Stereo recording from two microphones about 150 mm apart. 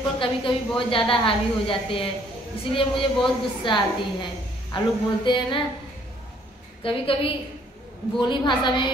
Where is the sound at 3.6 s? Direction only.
30° left (ahead or behind).